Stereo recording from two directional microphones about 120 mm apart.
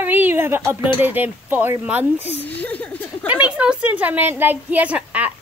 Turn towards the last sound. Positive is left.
turn(degrees=-10)  # may be behind; listen again after turning